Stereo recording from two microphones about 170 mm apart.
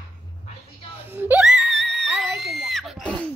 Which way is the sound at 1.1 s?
10° right (ahead or behind).